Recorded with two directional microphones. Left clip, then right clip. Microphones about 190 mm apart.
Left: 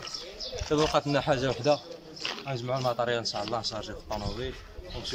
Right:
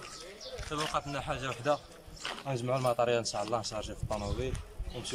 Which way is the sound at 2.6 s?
Centre (ahead or behind).